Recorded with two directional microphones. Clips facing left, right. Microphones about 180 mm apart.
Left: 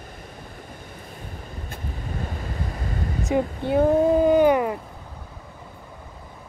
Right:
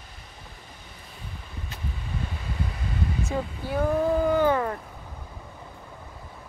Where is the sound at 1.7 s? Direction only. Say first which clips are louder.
Left 2 dB; 45° left (ahead or behind).